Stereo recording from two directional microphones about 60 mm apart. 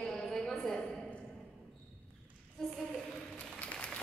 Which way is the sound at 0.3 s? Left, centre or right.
Centre.